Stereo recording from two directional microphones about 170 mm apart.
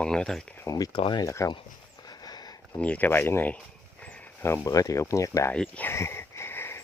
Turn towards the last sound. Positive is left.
turn(degrees=15)  # may be behind; listen again after turning